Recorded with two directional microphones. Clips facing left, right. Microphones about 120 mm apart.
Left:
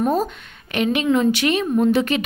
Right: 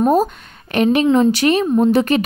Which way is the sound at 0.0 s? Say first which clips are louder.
Right 5 dB; 40° right (ahead or behind).